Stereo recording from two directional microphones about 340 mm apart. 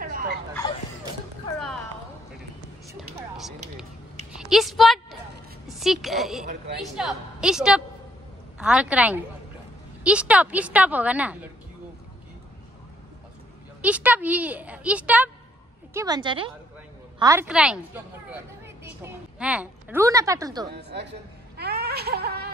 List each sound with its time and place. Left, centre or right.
0.0 s fowl: right
2.9 s music: centre
4.4 s a sound: centre
5.7 s a woman's voice: centre
13.7 s a woman's voice: centre
20.7 s speech: right
21.5 s a sound: right